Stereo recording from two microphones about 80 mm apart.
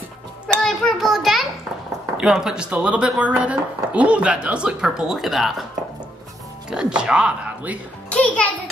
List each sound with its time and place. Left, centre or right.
0.6 s child singing: centre
2.1 s speech: centre
6.7 s speech: centre
8.1 s a child's voice: centre